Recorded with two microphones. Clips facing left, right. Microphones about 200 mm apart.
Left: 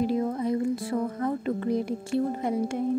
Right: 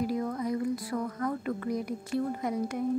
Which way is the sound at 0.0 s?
25° left (ahead or behind).